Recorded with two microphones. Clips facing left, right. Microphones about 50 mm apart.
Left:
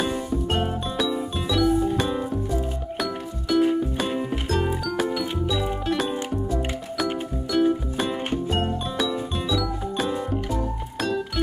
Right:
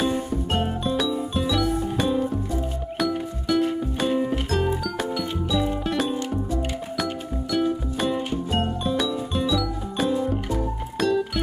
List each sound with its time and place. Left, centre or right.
0.0 s music: centre
7.5 s music: centre